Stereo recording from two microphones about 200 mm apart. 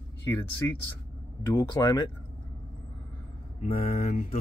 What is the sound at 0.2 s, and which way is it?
Speech, 15° left (ahead or behind).